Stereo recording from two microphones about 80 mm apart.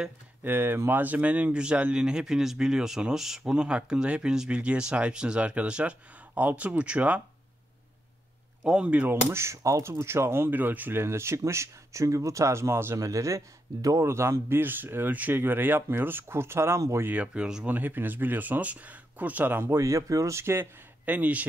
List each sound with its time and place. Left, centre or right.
0.4 s speech: right
8.6 s speech: centre
9.1 s speech: right
17.0 s speech: centre
17.6 s speech: right
21.0 s speech: centre